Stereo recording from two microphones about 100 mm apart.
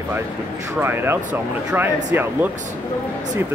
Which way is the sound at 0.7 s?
20° right (ahead or behind).